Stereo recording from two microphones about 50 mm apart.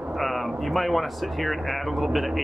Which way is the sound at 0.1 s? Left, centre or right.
Centre.